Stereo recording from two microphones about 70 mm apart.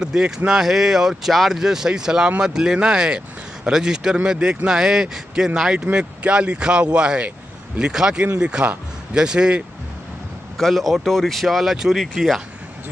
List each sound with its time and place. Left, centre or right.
0.0 s speech: centre
10.6 s speech: centre